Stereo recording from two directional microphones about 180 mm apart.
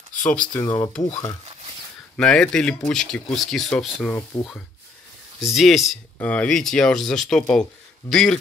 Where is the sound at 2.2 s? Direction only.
5° left (ahead or behind).